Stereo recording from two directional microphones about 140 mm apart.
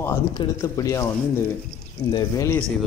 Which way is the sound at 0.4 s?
25° left (ahead or behind).